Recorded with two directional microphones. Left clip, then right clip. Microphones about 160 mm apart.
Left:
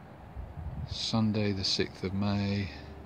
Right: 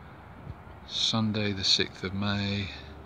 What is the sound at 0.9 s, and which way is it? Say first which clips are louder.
Speech: right 4 dB; 20° left (ahead or behind).